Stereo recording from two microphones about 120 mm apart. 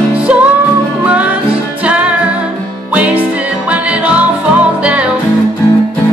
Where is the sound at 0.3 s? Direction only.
15° right (ahead or behind).